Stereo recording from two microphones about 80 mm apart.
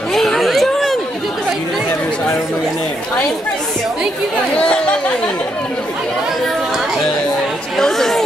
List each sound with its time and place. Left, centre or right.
0.1 s a sound: centre
4.6 s chatter: centre
7.7 s chatter: centre